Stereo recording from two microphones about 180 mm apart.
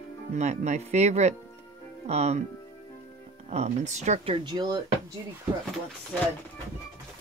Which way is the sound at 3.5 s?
40° right (ahead or behind).